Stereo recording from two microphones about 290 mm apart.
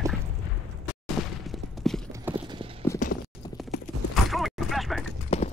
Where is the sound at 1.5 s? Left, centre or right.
Centre.